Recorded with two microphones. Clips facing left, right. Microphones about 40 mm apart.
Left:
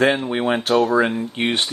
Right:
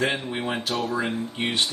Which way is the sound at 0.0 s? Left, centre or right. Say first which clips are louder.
Left 8 dB; left.